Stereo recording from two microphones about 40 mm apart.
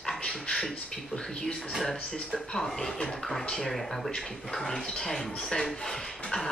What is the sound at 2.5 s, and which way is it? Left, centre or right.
Speech, centre.